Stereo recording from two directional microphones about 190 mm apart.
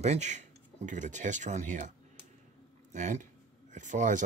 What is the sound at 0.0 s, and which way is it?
Speech, 35° right (ahead or behind).